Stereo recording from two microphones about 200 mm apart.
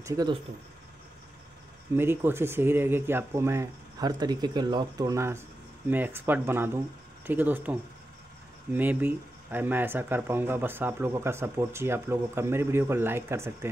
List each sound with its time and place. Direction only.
0.0 s speech: 15° right (ahead or behind)
2.0 s speech: 10° right (ahead or behind)
8.7 s speech: 10° right (ahead or behind)